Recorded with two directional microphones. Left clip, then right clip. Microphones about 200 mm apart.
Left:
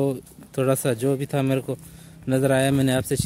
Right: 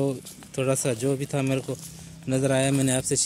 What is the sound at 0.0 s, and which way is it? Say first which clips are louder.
Speech: left 3 dB; 30° left (ahead or behind).